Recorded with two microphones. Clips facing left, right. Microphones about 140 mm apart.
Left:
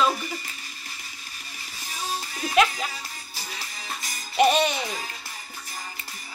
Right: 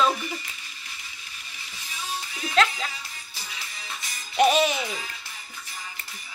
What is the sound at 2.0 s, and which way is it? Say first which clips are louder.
Music: left 3 dB; 40° left (ahead or behind).